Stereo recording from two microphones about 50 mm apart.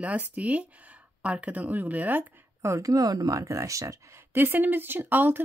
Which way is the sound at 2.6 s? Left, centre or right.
Right.